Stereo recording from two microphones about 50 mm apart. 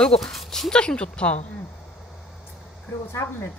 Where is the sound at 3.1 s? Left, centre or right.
Left.